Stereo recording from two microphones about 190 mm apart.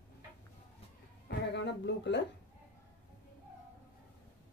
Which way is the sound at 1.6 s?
65° left (ahead or behind).